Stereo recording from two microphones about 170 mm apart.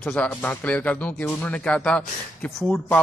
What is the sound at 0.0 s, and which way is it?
Speech, 5° left (ahead or behind).